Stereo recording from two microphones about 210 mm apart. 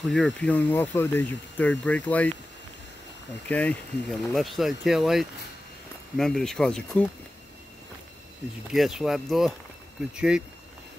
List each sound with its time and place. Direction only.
0.0 s speech: centre (ahead or behind)
3.4 s speech: 5° left (ahead or behind)
8.7 s speech: centre (ahead or behind)